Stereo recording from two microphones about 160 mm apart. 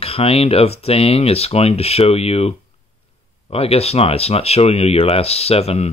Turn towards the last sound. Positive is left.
turn(degrees=40)  # may be behind; listen again after turning